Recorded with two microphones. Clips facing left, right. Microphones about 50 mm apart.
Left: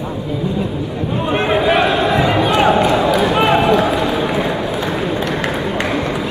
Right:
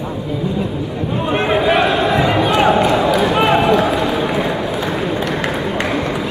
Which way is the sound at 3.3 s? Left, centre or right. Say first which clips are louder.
Even; centre.